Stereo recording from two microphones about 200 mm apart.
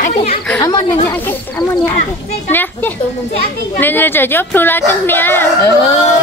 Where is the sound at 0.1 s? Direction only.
30° left (ahead or behind).